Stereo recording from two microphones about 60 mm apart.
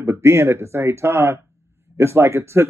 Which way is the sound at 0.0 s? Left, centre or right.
Right.